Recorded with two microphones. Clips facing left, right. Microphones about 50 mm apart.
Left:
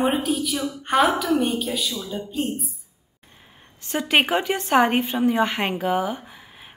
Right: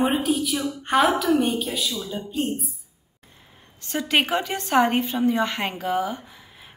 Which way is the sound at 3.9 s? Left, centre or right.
Left.